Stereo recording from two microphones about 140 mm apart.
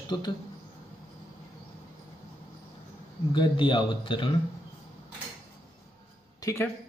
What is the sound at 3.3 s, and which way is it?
Speech, 35° left (ahead or behind).